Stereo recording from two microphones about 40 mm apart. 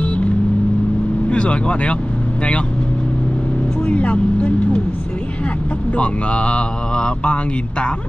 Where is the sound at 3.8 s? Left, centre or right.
Left.